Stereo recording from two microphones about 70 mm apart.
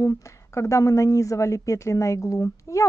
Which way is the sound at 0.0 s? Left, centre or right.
Left.